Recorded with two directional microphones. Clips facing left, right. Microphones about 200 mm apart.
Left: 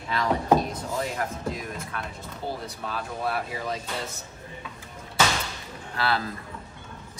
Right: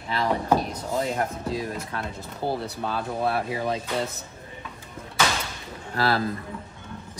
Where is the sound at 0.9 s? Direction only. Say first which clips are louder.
Right 5 dB; 25° right (ahead or behind).